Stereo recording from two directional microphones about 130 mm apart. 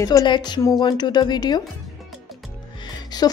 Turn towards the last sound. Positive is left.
turn(degrees=30)  # may be behind; listen again after turning